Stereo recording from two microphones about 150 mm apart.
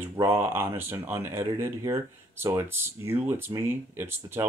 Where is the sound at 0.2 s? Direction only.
15° right (ahead or behind).